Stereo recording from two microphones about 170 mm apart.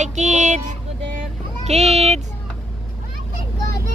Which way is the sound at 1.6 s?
40° right (ahead or behind).